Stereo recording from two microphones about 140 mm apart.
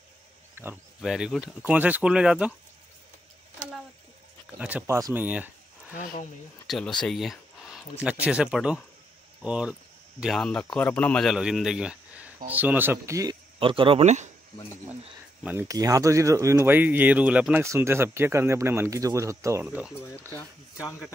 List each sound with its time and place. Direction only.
0.6 s speech: 15° right (ahead or behind)
1.0 s speech: centre (ahead or behind)
4.5 s speech: 10° right (ahead or behind)
4.8 s speech: 20° right (ahead or behind)
5.2 s speech: 10° right (ahead or behind)
6.7 s speech: 5° left (ahead or behind)
11.3 s speech: 5° right (ahead or behind); by 13.4 s 25° right (ahead or behind)
13.6 s speech: 40° right (ahead or behind)
14.0 s speech: 55° right (ahead or behind)
15.7 s speech: 25° right (ahead or behind)
19.6 s speech: 10° right (ahead or behind)